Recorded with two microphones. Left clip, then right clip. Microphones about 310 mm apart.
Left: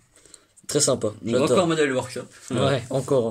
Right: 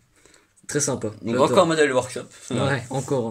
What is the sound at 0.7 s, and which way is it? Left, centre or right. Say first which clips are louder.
Speech: left 3 dB; left.